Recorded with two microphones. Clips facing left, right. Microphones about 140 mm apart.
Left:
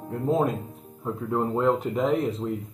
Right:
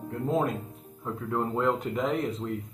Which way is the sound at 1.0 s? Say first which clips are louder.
Left 4 dB; 10° left (ahead or behind).